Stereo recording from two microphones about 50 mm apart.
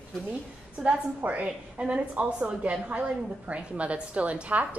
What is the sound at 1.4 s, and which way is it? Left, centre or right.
A woman's voice, centre.